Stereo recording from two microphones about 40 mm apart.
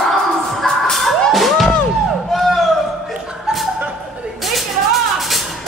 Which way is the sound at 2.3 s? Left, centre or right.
Centre.